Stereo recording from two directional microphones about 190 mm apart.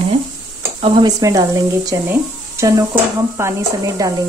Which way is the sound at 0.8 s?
20° right (ahead or behind).